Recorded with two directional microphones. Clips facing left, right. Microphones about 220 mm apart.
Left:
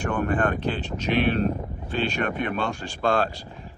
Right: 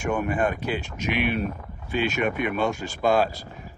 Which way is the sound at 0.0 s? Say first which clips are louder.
Even; 10° right (ahead or behind).